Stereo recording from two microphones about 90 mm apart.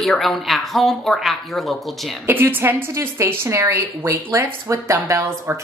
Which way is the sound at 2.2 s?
25° right (ahead or behind).